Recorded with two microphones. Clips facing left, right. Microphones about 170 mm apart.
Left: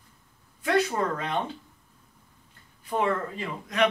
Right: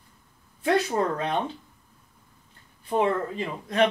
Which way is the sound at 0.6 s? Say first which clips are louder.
Right 1 dB; 25° right (ahead or behind).